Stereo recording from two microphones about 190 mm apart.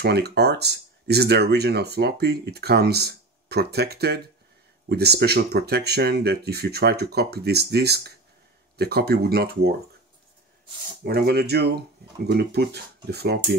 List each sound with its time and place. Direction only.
0.0 s speech: 60° right (ahead or behind)
11.1 s speech: 55° right (ahead or behind)